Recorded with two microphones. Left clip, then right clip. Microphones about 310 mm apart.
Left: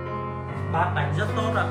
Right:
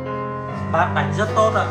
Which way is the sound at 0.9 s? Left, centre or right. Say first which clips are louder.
Right 8 dB; centre.